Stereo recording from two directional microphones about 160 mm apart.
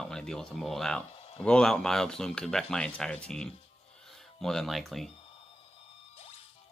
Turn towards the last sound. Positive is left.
turn(degrees=0)  # may be behind; listen again after turning